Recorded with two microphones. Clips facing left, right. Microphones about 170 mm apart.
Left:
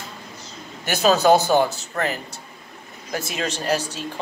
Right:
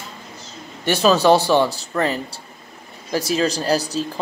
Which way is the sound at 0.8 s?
30° right (ahead or behind).